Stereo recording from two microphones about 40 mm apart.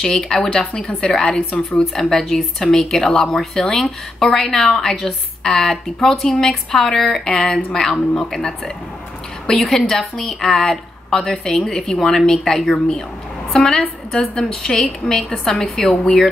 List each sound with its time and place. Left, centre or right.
0.0 s a woman's voice: centre